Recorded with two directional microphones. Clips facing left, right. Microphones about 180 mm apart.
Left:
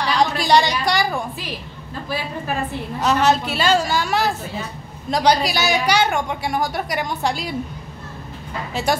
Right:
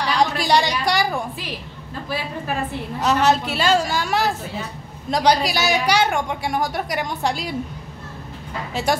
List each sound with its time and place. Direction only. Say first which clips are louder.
0.0 s a sound: left 1 dB; 10° right (ahead or behind)
2.0 s a woman's voice: left 1 dB; 40° left (ahead or behind)
3.0 s a woman's voice: even; centre (ahead or behind)
8.9 s a woman's voice: even; centre (ahead or behind)